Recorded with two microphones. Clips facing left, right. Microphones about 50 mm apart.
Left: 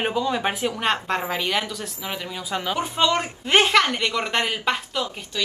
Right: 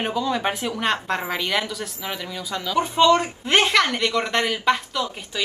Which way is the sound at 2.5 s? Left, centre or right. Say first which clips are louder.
Right 2 dB; left.